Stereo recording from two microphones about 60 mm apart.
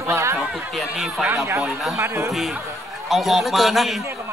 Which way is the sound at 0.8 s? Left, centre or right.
Centre.